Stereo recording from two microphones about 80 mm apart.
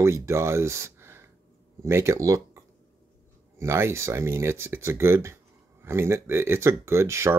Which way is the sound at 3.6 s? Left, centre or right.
Right.